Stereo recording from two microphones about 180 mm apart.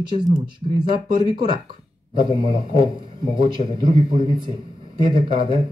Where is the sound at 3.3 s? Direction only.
25° right (ahead or behind).